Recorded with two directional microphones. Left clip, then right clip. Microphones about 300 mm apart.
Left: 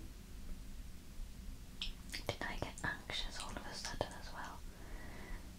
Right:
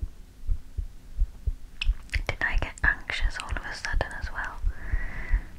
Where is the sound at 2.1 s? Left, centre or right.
Centre.